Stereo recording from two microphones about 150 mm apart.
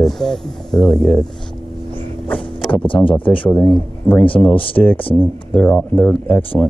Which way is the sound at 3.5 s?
5° left (ahead or behind).